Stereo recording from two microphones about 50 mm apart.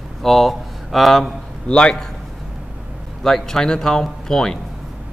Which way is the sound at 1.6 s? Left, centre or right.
Left.